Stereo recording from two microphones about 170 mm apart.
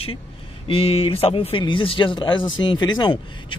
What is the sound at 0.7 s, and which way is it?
Speech, 35° left (ahead or behind).